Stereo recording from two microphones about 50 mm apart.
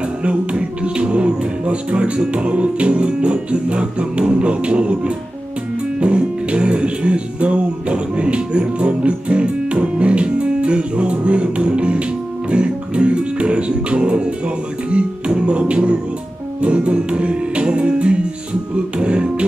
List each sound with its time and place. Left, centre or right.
0.2 s music: right